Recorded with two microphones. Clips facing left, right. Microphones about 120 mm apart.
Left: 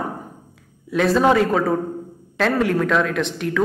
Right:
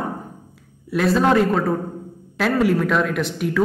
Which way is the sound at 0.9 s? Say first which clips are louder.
Left 1 dB; centre (ahead or behind).